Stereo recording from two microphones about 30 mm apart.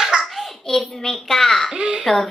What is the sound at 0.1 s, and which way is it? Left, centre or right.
Hands, right.